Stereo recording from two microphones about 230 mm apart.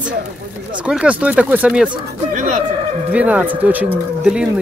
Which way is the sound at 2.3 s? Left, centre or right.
Right.